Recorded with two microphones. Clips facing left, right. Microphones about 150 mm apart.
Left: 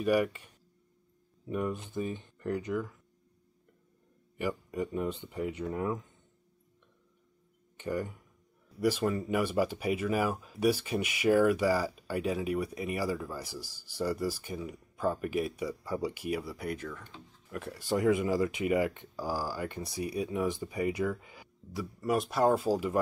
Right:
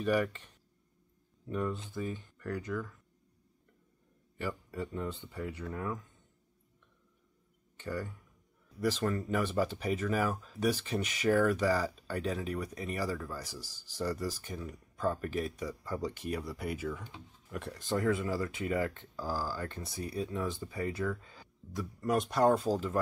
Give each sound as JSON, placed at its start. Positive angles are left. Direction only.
{"t": 0.0, "sound": "speech", "side_deg": 10}
{"t": 4.4, "sound": "speech", "side_deg": 15}
{"t": 7.7, "sound": "speech", "side_deg": 15}
{"t": 17.5, "sound": "speech", "side_deg": 0}